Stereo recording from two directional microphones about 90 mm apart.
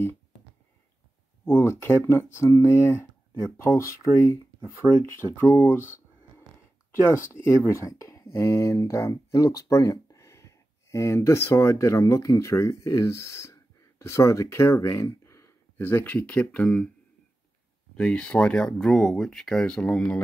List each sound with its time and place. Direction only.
1.4 s speech: 25° left (ahead or behind)
4.8 s speech: 10° right (ahead or behind)
5.3 s speech: 25° left (ahead or behind)
17.9 s speech: 10° left (ahead or behind)